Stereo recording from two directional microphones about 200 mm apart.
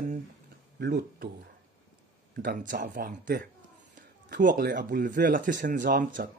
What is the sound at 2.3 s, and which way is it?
Speech, 45° right (ahead or behind).